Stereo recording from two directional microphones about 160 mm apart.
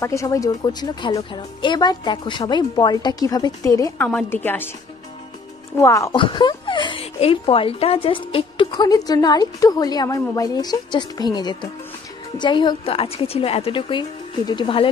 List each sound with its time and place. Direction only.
0.0 s speech: 20° left (ahead or behind)
4.0 s a woman's voice: 10° left (ahead or behind)
5.8 s speech: 20° left (ahead or behind)
6.1 s a woman's voice: 30° left (ahead or behind)